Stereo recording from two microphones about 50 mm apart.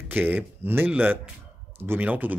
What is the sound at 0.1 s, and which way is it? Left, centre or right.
Speech, right.